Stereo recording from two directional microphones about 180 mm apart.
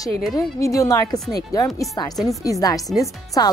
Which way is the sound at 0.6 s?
20° left (ahead or behind).